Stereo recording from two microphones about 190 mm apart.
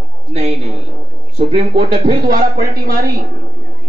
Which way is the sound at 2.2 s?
50° right (ahead or behind).